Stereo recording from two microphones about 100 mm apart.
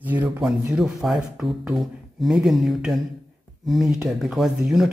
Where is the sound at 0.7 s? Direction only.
5° right (ahead or behind).